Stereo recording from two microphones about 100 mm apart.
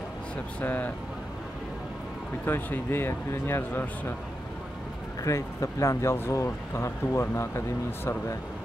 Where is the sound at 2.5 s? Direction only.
20° left (ahead or behind).